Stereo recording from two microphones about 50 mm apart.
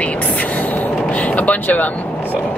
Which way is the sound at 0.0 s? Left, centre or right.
Left.